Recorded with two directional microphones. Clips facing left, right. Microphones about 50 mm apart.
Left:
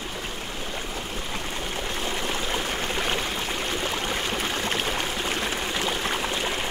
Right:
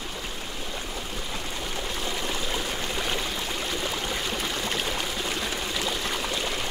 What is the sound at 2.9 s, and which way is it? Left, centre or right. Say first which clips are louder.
Stream: left 2 dB; left.